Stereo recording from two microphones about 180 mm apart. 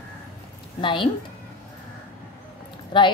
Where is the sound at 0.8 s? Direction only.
25° left (ahead or behind).